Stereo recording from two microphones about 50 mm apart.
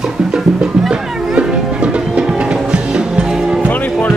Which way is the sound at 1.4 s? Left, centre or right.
Right.